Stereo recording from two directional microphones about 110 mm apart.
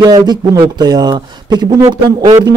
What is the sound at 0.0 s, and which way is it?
A man's voice, 35° right (ahead or behind).